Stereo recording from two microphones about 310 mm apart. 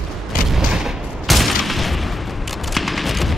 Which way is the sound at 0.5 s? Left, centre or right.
Centre.